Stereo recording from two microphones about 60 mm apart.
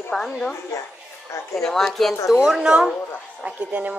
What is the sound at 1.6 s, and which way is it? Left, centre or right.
Speech, centre.